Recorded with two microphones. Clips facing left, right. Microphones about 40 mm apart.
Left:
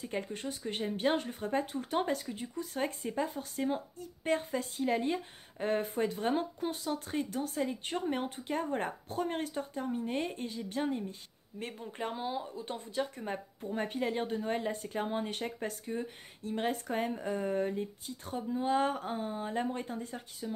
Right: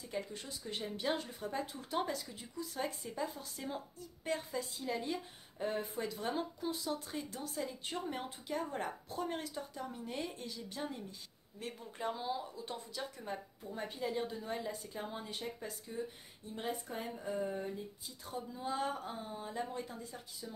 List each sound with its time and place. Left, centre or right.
0.0 s speech: left
16.4 s speech: left